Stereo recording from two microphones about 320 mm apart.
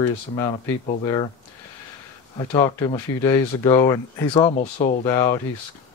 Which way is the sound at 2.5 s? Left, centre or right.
Centre.